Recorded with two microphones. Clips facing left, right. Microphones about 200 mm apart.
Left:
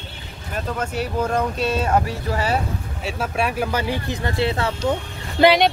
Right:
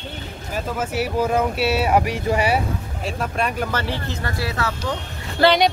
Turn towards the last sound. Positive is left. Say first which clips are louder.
# left 2 dB
turn(degrees=20)  # may be behind; listen again after turning